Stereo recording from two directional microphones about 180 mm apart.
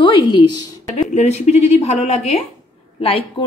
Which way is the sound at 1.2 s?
35° left (ahead or behind).